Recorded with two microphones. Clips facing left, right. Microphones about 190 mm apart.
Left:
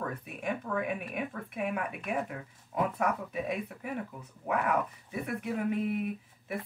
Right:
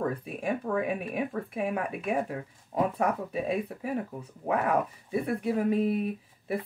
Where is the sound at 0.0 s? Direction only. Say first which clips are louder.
Right 5 dB; 30° right (ahead or behind).